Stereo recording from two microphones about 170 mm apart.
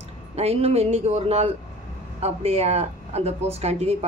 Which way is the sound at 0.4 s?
35° right (ahead or behind).